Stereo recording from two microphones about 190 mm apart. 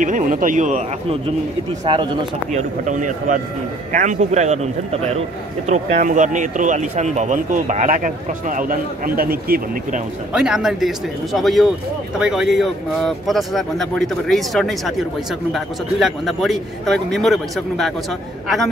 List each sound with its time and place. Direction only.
0.0 s speech: 45° right (ahead or behind)
1.9 s speech: 25° right (ahead or behind)
2.5 s speech: 40° right (ahead or behind)
5.7 s speech: 40° right (ahead or behind)
10.3 s speech: 5° right (ahead or behind)